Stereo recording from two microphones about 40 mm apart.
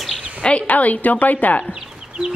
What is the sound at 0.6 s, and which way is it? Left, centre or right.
A woman's voice, left.